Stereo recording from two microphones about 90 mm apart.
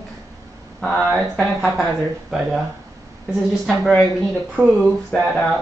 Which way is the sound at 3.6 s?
5° right (ahead or behind).